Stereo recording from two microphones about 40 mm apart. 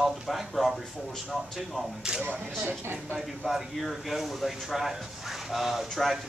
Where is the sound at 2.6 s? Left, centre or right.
Right.